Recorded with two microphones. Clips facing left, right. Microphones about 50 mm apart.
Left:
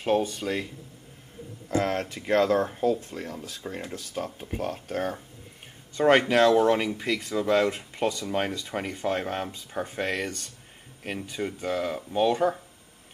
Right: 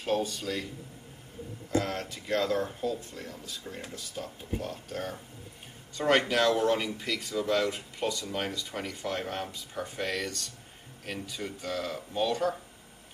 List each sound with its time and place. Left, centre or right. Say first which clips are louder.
0.0 s speech: left 5 dB; left
1.7 s speech: left 4 dB; left
5.9 s speech: left 5 dB; left